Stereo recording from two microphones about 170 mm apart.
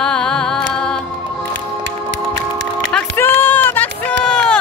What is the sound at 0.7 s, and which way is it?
Music, 5° left (ahead or behind).